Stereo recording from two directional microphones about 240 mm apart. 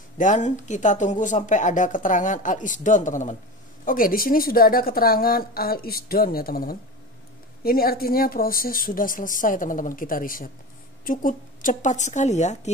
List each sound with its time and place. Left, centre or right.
0.2 s a woman's voice: left